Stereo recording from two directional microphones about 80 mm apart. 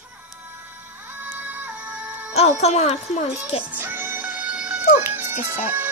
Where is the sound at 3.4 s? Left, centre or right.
Centre.